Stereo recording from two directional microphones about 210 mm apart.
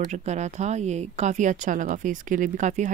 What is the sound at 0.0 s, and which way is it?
A woman's voice, 35° right (ahead or behind).